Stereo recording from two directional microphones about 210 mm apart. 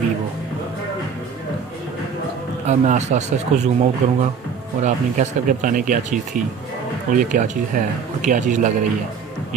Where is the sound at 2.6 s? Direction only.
35° right (ahead or behind).